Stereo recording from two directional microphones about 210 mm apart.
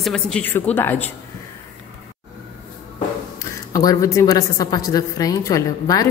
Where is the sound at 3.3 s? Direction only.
15° left (ahead or behind).